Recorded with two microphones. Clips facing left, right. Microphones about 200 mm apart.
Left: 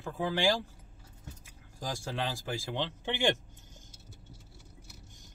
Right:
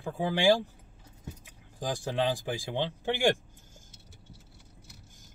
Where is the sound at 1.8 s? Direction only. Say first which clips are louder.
Right 6 dB; 15° right (ahead or behind).